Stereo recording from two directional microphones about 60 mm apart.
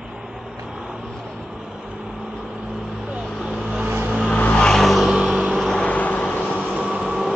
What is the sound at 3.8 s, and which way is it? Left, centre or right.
Vehicle, right.